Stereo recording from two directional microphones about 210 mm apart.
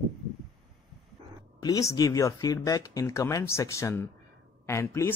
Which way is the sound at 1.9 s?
15° left (ahead or behind).